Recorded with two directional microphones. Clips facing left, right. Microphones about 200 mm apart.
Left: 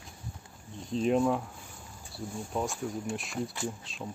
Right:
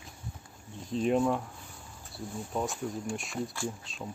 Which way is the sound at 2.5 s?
Centre (ahead or behind).